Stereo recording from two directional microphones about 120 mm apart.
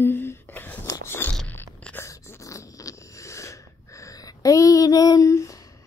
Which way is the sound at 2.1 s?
25° left (ahead or behind).